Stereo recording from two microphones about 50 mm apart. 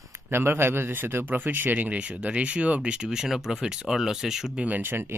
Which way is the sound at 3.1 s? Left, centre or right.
Centre.